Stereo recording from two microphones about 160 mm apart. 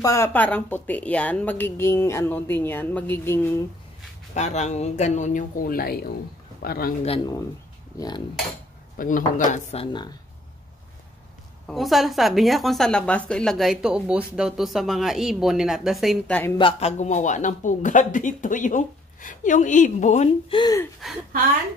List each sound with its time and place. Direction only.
0.0 s a woman's voice: 20° left (ahead or behind)
4.3 s a man's voice: 45° left (ahead or behind); by 6.9 s 75° left (ahead or behind)
8.9 s speech: 55° left (ahead or behind)
11.6 s a woman's voice: centre (ahead or behind)
16.5 s speech: 35° left (ahead or behind)
20.4 s speech: 30° left (ahead or behind)
21.0 s a woman's voice: centre (ahead or behind)